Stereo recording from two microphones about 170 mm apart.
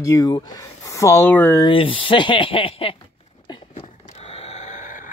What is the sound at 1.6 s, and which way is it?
Speech, 30° left (ahead or behind).